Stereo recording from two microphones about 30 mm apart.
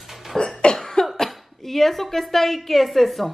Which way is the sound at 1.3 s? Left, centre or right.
Centre.